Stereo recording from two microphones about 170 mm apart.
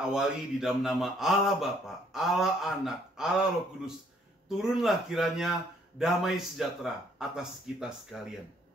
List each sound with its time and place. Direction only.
0.0 s a man's voice: 5° right (ahead or behind)